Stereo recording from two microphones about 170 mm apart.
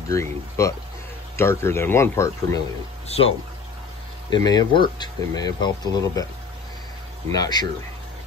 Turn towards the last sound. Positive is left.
turn(degrees=25)  # may be behind; listen again after turning